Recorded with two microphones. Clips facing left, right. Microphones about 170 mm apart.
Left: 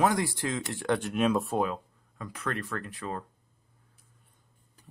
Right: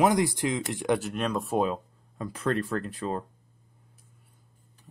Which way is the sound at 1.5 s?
25° right (ahead or behind).